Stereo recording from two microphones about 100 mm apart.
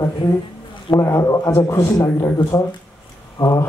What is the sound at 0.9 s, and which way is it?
A man's voice, 30° left (ahead or behind).